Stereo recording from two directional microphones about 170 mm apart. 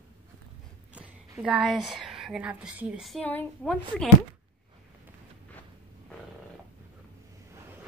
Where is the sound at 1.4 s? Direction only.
5° right (ahead or behind).